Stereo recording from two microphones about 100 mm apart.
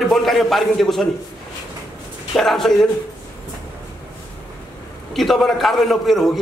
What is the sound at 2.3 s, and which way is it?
Speech, 5° left (ahead or behind).